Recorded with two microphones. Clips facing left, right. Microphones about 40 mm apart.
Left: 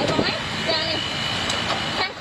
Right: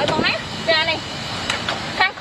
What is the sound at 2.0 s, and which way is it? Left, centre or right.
Vehicle, right.